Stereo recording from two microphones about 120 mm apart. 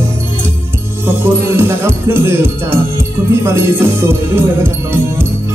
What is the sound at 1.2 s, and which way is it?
Music, 20° right (ahead or behind).